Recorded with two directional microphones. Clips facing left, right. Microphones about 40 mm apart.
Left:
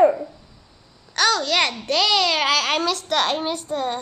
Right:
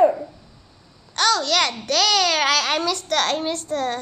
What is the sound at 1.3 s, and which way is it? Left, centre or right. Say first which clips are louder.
Speech: even; centre.